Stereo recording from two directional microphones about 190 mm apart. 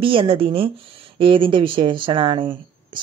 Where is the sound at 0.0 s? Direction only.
30° right (ahead or behind).